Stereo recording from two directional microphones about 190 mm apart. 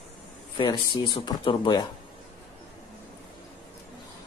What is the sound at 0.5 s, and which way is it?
Speech, 25° left (ahead or behind).